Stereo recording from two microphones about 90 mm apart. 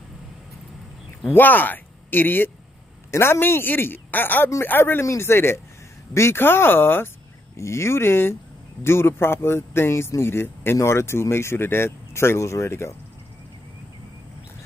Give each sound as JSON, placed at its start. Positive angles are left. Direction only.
{"t": 1.3, "sound": "speech", "side_deg": 20}